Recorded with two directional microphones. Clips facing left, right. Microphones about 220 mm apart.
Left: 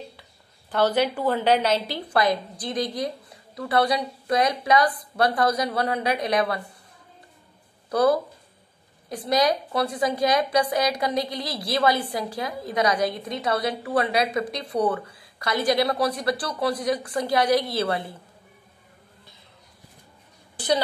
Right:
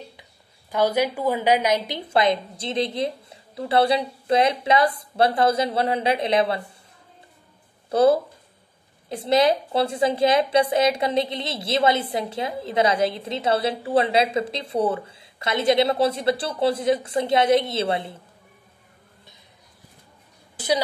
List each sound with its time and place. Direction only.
0.2 s a woman's voice: 10° right (ahead or behind)
7.9 s a woman's voice: 25° right (ahead or behind)
20.5 s speech: 10° right (ahead or behind)